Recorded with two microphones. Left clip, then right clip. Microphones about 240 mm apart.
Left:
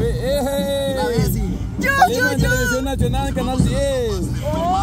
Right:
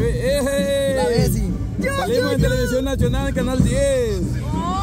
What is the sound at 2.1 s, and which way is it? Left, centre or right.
Music, left.